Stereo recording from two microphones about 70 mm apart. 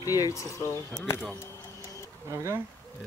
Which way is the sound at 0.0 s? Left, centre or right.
Left.